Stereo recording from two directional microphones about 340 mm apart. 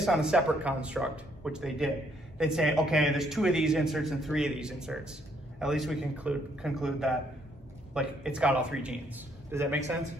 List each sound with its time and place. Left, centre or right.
0.0 s a man's voice: centre